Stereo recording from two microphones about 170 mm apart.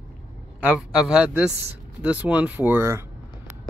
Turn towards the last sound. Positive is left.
turn(degrees=-15)  # may be behind; listen again after turning